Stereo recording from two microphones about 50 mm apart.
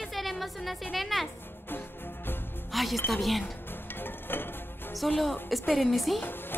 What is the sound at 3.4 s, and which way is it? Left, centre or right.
Music, left.